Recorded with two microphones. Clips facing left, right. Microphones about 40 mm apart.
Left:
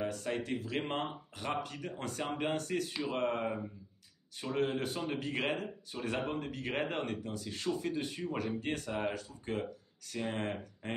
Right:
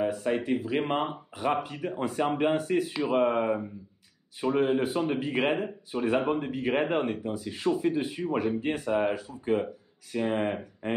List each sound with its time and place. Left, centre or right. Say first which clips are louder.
0.0 s speech: right 8 dB; centre